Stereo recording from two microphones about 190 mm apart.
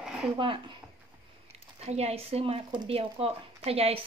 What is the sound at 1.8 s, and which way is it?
Speech, 35° right (ahead or behind).